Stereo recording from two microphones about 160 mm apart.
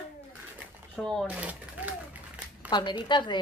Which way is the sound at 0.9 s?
5° left (ahead or behind).